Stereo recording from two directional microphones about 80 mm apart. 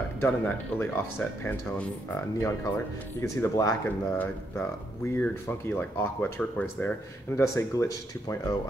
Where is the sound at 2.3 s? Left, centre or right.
Left.